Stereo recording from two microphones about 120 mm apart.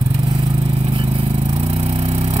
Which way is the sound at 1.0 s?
45° right (ahead or behind).